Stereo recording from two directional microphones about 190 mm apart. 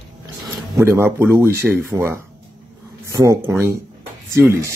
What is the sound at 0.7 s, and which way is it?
Speech, 15° right (ahead or behind).